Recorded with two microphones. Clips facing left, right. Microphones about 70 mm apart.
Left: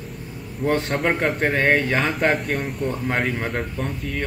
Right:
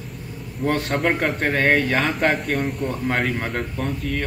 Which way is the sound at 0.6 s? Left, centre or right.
Centre.